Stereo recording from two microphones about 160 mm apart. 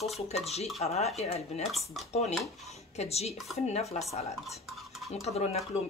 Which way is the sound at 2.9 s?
40° left (ahead or behind).